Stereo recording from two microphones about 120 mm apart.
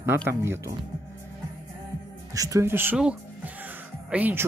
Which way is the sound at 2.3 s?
30° right (ahead or behind).